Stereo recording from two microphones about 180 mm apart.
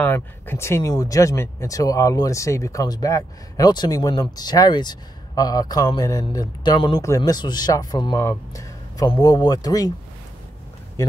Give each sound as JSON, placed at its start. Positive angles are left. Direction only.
{"t": 0.0, "sound": "speech", "side_deg": 10}